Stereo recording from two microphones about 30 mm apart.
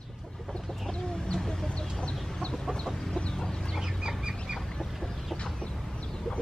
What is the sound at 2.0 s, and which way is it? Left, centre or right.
Chicken, left.